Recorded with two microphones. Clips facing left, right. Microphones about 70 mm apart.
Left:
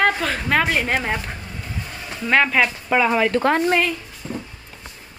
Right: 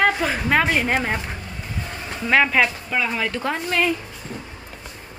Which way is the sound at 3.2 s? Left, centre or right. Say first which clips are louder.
Left 7 dB; left.